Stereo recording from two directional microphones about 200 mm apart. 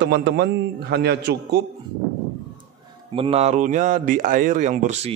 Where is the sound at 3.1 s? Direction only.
30° right (ahead or behind).